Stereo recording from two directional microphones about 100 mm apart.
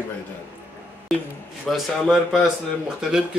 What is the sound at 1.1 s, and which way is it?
A man's voice, centre (ahead or behind).